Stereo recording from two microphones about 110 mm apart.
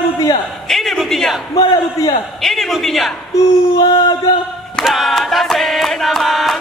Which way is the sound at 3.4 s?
35° left (ahead or behind).